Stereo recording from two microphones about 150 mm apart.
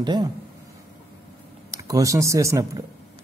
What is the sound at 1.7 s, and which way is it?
Speech, 25° right (ahead or behind).